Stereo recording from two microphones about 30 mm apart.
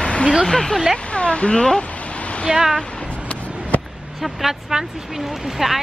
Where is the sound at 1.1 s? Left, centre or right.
Left.